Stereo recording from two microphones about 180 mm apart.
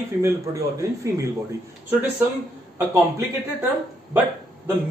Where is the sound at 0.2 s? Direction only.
15° right (ahead or behind).